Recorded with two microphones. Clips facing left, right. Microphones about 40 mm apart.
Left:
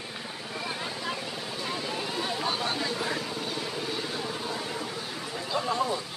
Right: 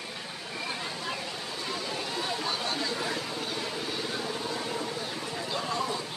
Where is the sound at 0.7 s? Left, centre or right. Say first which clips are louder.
Left 1 dB; centre.